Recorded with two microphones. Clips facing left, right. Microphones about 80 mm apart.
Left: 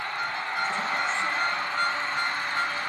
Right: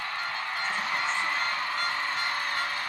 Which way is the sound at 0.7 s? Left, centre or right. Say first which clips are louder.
Left 1 dB; left.